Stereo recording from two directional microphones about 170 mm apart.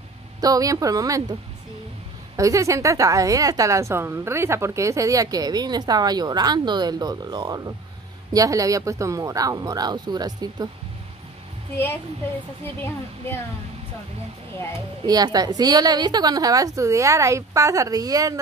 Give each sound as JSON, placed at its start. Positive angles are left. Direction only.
{"t": 0.4, "sound": "a woman's voice", "side_deg": -20}
{"t": 2.3, "sound": "a woman's voice", "side_deg": -20}
{"t": 12.6, "sound": "speech", "side_deg": 15}
{"t": 15.0, "sound": "a woman's voice", "side_deg": -20}